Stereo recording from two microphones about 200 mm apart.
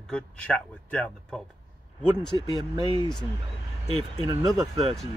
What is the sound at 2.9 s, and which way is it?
Speech, 20° left (ahead or behind).